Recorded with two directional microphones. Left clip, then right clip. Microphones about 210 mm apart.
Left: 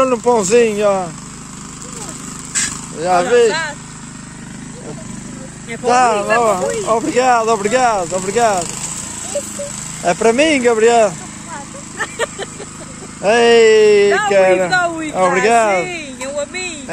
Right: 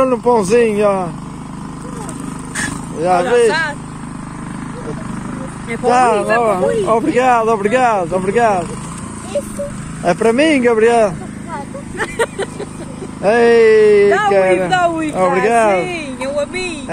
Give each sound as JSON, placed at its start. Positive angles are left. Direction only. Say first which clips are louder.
{"t": 0.0, "sound": "speech", "louder": "right 1 dB", "side_deg": 10}
{"t": 3.0, "sound": "speech", "louder": "even", "side_deg": 10}
{"t": 5.9, "sound": "speech", "louder": "right 1 dB", "side_deg": 10}
{"t": 10.0, "sound": "speech", "louder": "even", "side_deg": 10}
{"t": 12.0, "sound": "vehicle", "louder": "right 3 dB", "side_deg": -15}
{"t": 13.2, "sound": "speech", "louder": "even", "side_deg": 15}
{"t": 14.7, "sound": "speech", "louder": "right 2 dB", "side_deg": -5}
{"t": 15.1, "sound": "speech", "louder": "left 2 dB", "side_deg": 20}
{"t": 15.8, "sound": "speech", "louder": "right 2 dB", "side_deg": -5}